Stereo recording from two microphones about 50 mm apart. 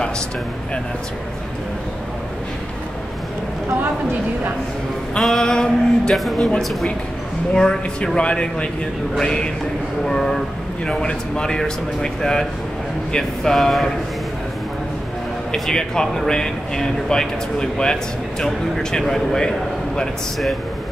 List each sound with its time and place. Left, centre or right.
5.2 s speech: centre
6.1 s speech: centre
7.5 s a man's voice: centre
15.5 s speech: centre